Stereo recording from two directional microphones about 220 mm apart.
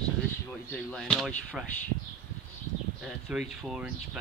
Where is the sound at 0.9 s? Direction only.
Centre (ahead or behind).